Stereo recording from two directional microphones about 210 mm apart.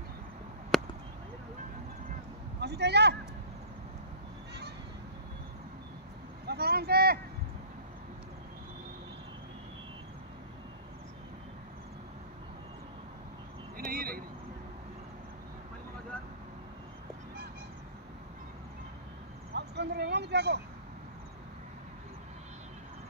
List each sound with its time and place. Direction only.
0.7 s a sound: centre (ahead or behind)
2.6 s speech: 50° right (ahead or behind)
6.4 s speech: 50° right (ahead or behind)
13.7 s vehicle: 45° right (ahead or behind)
19.5 s vehicle: 55° right (ahead or behind)